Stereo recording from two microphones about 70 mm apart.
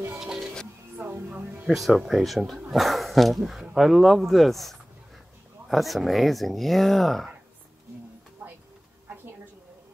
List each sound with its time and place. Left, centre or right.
0.9 s music: right
1.3 s speech: centre
1.7 s speech: centre
8.4 s a sound: right